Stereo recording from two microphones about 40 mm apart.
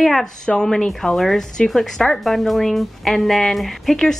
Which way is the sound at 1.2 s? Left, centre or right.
Centre.